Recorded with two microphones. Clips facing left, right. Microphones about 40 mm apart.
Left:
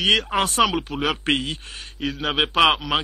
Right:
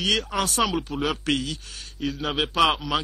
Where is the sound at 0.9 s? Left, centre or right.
Centre.